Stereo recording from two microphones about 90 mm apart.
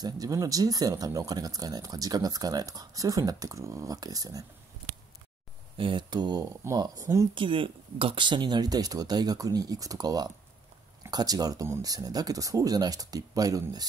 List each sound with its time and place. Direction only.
0.0 s speech: 40° right (ahead or behind)
5.8 s speech: 65° right (ahead or behind)
6.8 s speech: 40° right (ahead or behind)
7.3 s speech: 70° right (ahead or behind); by 13.8 s 40° right (ahead or behind)